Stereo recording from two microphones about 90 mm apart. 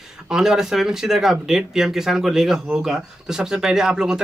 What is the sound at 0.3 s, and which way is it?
Speech, 5° right (ahead or behind).